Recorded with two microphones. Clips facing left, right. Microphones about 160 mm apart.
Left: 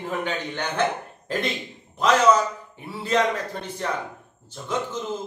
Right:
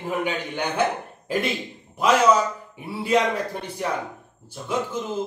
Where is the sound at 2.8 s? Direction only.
10° right (ahead or behind).